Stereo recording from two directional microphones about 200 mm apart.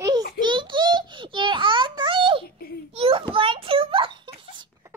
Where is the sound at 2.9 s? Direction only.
30° right (ahead or behind).